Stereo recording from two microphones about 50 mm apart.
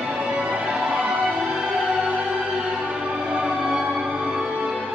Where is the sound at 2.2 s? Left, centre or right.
Centre.